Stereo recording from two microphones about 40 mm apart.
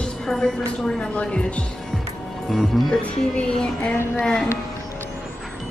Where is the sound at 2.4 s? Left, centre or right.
Centre.